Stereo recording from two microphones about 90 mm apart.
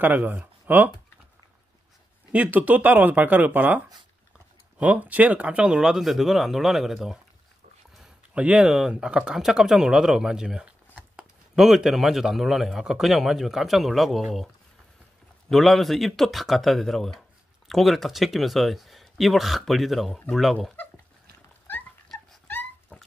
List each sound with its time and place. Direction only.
0.0 s speech: 20° right (ahead or behind)
2.3 s speech: 20° right (ahead or behind)
8.4 s speech: 15° right (ahead or behind)
15.5 s speech: centre (ahead or behind)
22.9 s a sound: 10° left (ahead or behind)